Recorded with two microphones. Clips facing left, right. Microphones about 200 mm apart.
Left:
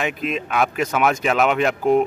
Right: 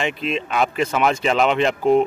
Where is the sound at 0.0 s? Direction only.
5° left (ahead or behind).